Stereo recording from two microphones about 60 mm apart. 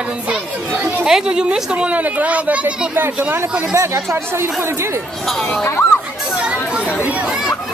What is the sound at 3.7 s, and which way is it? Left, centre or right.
Speech, right.